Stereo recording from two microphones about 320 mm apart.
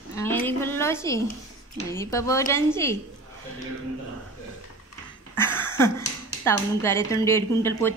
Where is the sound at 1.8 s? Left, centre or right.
Centre.